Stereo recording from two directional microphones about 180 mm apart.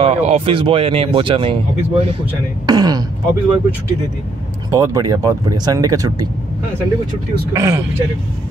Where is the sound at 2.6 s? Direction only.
20° right (ahead or behind).